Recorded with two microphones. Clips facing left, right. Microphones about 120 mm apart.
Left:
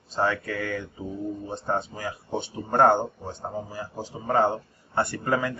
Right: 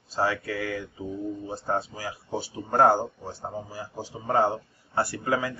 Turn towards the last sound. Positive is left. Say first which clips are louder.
# left 1 dB
turn(degrees=-5)  # may be behind; listen again after turning